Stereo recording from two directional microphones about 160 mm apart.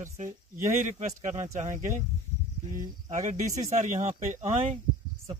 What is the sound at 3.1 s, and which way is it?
Speech, 50° right (ahead or behind).